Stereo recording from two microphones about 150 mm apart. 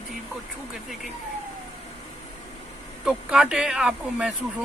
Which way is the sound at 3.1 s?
5° right (ahead or behind).